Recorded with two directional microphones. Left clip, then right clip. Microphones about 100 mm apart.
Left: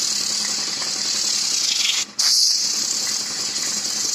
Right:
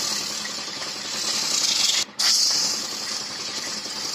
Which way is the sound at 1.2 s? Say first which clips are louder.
Right 1 dB; 30° right (ahead or behind).